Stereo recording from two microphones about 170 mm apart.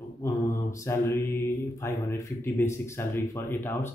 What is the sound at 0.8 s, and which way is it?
Speech, 15° left (ahead or behind).